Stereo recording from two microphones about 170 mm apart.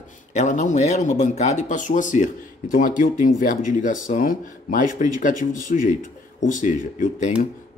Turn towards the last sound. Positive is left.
turn(degrees=50)  # may be behind; listen again after turning